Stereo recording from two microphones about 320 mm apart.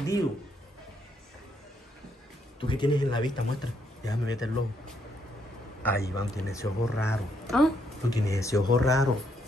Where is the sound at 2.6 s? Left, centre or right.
Centre.